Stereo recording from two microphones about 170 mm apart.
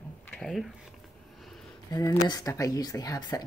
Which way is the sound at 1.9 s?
20° left (ahead or behind).